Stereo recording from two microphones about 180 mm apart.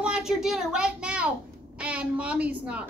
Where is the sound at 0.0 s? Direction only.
5° right (ahead or behind).